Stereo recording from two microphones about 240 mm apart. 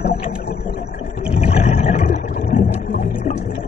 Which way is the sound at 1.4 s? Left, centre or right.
Left.